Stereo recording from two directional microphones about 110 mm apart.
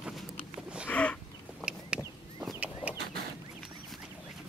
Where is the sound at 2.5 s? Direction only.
15° right (ahead or behind).